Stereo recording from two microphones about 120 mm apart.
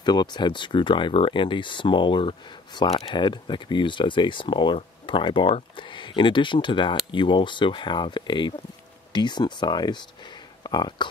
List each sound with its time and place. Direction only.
0.0 s speech: 35° left (ahead or behind)